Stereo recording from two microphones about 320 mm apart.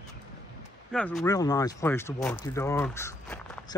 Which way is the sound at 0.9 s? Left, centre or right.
Centre.